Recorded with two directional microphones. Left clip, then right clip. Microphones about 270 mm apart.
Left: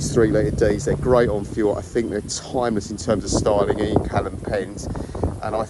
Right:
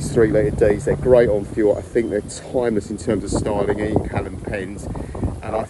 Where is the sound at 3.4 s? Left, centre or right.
Right.